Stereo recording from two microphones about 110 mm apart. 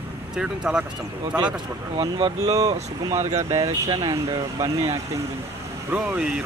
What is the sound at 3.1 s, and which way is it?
Speech, 90° right.